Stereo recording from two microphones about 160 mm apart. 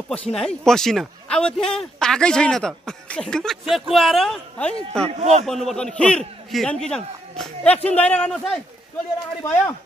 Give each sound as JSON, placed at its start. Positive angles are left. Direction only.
{"t": 0.1, "sound": "a man's voice", "side_deg": 5}
{"t": 5.0, "sound": "speech", "side_deg": -40}
{"t": 5.4, "sound": "a man's voice", "side_deg": 0}